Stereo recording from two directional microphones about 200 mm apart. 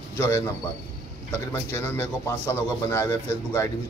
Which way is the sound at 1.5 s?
10° left (ahead or behind).